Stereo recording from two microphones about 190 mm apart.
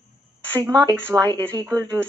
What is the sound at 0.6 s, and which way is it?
Speech, 20° right (ahead or behind).